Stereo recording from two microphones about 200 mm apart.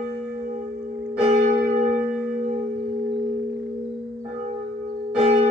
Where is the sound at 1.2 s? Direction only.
40° right (ahead or behind).